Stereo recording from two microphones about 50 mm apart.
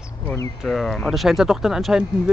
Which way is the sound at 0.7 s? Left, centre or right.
Centre.